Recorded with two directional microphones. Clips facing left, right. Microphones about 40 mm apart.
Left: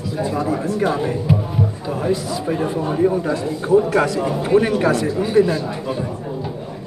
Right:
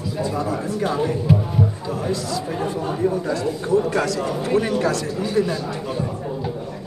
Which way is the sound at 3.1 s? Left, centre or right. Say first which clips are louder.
Left 2 dB; left.